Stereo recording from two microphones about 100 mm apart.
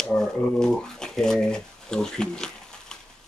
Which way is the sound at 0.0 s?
5° left (ahead or behind).